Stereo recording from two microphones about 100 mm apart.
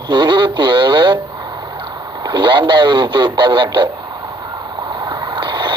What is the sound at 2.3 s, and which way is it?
Speech, 50° right (ahead or behind).